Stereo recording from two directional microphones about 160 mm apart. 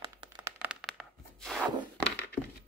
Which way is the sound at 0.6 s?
5° right (ahead or behind).